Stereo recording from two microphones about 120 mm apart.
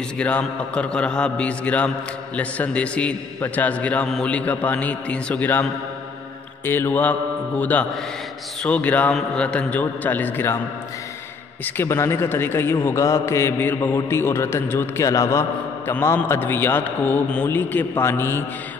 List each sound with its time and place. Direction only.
0.2 s a man's voice: 10° left (ahead or behind)
11.6 s a man's voice: 20° left (ahead or behind)